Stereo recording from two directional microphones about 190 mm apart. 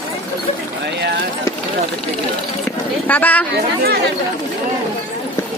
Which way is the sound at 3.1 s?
10° left (ahead or behind).